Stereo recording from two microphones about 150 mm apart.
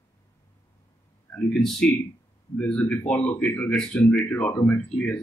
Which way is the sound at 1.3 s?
5° left (ahead or behind).